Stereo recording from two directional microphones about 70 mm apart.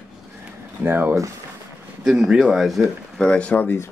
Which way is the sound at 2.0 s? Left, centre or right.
Centre.